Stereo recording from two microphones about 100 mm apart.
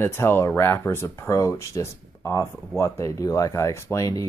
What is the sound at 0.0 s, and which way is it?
Speech, 25° left (ahead or behind).